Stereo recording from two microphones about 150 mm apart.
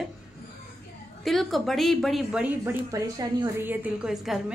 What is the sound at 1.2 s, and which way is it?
A woman's voice, centre (ahead or behind).